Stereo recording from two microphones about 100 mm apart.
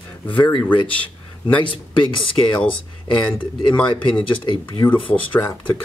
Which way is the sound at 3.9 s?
50° left (ahead or behind).